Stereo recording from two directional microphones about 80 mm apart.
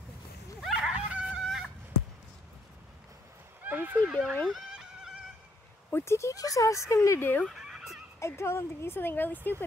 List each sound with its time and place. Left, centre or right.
0.6 s dog: centre
1.4 s goose: centre
3.6 s neigh: right
4.5 s goat: centre
5.9 s speech: left
7.4 s fowl: centre
8.2 s speech: left